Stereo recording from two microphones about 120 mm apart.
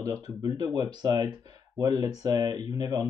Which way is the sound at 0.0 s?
30° right (ahead or behind).